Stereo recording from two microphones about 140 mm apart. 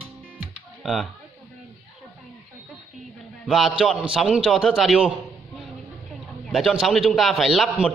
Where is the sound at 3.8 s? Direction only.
5° right (ahead or behind).